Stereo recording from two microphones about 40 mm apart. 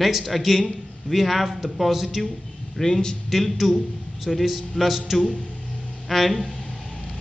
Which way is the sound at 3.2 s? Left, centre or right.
Centre.